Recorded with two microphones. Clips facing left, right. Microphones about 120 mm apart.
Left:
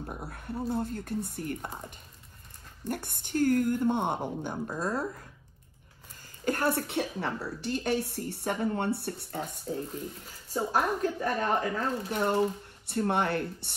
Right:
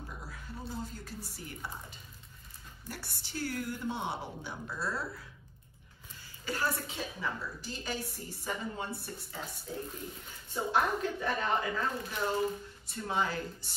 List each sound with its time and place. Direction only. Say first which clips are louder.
0.0 s speech: left 6 dB; 55° left (ahead or behind)
2.9 s a woman's voice: left 10 dB; 55° left (ahead or behind)
6.4 s speech: left 7 dB; 55° left (ahead or behind)
10.5 s a woman's voice: left 2 dB; 40° left (ahead or behind)
12.1 s speech: left 7 dB; 60° left (ahead or behind)